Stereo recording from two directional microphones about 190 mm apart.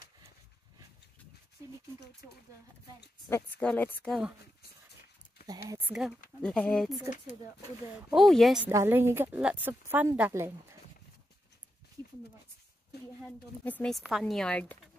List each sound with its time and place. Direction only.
1.6 s a sound: 15° right (ahead or behind)
3.3 s speech: 10° left (ahead or behind)
5.5 s a woman's voice: 15° right (ahead or behind)
6.4 s speech: 5° left (ahead or behind)
8.1 s speech: centre (ahead or behind)
8.6 s a woman's voice: 10° right (ahead or behind)
13.2 s speech: 5° left (ahead or behind)